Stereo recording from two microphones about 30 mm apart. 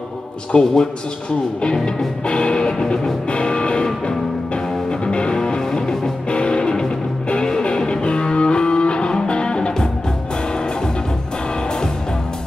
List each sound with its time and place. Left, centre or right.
0.5 s music: left
5.6 s music: left
6.3 s music: left